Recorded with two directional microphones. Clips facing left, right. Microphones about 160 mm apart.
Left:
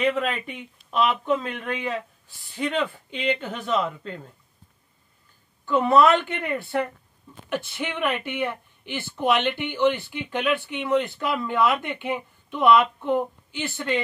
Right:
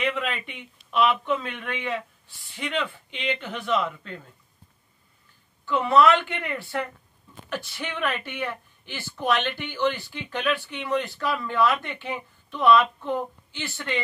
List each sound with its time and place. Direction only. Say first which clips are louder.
0.2 s speech: left 3 dB; 40° left (ahead or behind)
5.7 s speech: left 1 dB; 45° left (ahead or behind)
7.4 s speech: left 4 dB; 20° left (ahead or behind)